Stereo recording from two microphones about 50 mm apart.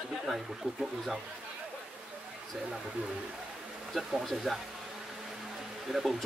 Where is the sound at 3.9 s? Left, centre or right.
Centre.